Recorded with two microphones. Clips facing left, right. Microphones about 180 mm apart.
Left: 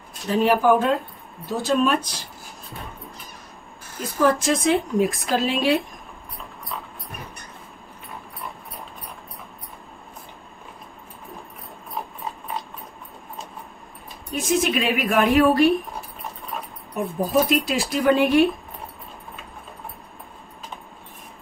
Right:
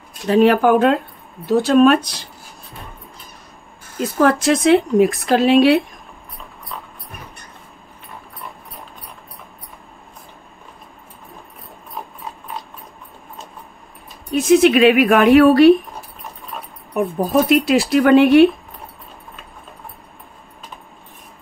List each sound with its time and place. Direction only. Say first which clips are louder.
0.3 s a woman's voice: right 5 dB; 70° right (ahead or behind)
4.0 s a woman's voice: right 5 dB; 75° right (ahead or behind)
14.3 s a woman's voice: right 10 dB; 70° right (ahead or behind)
17.5 s a woman's voice: right 8 dB; 70° right (ahead or behind)